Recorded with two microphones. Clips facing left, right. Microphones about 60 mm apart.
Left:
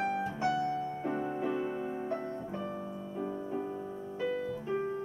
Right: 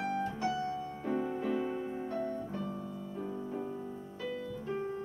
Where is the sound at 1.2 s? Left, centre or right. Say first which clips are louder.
Right 1 dB; centre.